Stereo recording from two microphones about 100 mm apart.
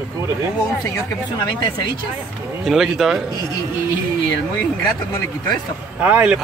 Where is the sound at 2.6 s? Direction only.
5° right (ahead or behind).